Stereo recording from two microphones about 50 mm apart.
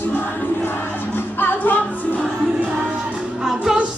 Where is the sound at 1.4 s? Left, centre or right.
Left.